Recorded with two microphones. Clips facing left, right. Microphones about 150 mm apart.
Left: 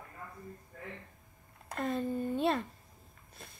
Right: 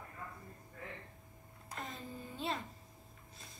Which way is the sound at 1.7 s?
60° left (ahead or behind).